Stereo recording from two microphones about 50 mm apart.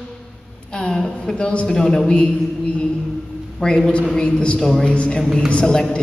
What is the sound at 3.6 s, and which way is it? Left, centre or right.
Speech, centre.